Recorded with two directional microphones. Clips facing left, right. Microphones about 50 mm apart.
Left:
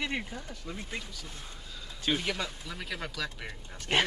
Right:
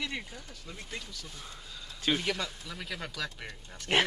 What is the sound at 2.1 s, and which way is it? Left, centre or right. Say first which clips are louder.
Speech: even; centre.